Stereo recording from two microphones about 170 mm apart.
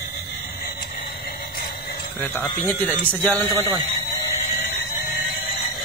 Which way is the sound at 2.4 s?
5° left (ahead or behind).